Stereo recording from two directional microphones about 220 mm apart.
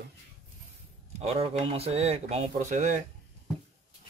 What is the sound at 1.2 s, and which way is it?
Speech, 30° right (ahead or behind).